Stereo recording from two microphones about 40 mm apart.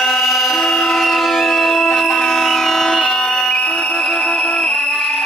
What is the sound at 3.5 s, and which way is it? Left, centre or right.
Music, left.